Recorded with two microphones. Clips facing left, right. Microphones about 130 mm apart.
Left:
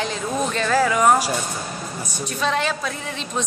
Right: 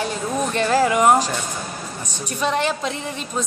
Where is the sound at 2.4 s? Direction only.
15° right (ahead or behind).